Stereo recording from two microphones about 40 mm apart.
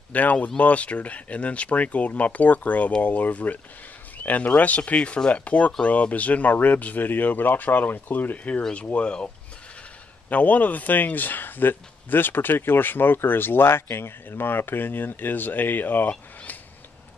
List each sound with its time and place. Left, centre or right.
0.1 s speech: left
8.7 s speech: left
10.3 s speech: left